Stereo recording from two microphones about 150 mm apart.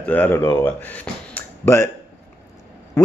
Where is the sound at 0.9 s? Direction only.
15° left (ahead or behind).